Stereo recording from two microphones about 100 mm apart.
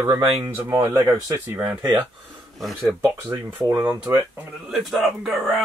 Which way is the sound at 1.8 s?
50° right (ahead or behind).